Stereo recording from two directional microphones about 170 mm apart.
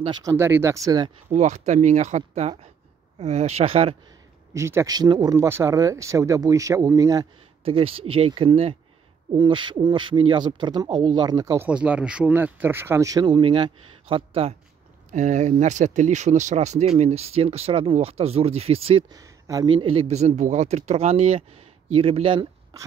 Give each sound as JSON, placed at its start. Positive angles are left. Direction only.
{"t": 0.0, "sound": "speech", "side_deg": -25}
{"t": 1.3, "sound": "speech", "side_deg": -45}
{"t": 4.6, "sound": "speech", "side_deg": -15}
{"t": 7.6, "sound": "speech", "side_deg": -35}
{"t": 15.0, "sound": "speech", "side_deg": -45}
{"t": 19.1, "sound": "speech", "side_deg": -20}